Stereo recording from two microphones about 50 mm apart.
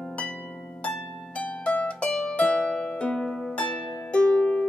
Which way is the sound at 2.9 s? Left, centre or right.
Centre.